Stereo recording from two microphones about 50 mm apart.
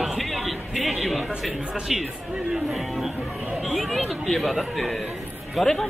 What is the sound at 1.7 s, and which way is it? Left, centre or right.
Speech, centre.